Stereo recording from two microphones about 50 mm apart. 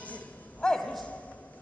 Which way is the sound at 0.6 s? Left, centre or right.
Centre.